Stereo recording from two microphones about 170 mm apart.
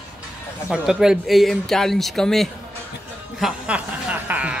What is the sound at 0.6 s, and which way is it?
A woman's voice, 5° right (ahead or behind).